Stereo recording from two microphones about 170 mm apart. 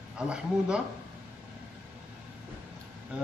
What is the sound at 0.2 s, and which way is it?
Speech, 5° right (ahead or behind).